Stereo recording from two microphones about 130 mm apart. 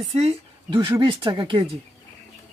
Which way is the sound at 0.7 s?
35° right (ahead or behind).